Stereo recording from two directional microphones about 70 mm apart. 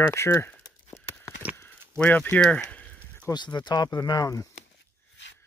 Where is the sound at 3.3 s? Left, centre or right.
Left.